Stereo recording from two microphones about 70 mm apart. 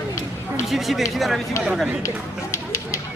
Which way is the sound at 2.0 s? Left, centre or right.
Left.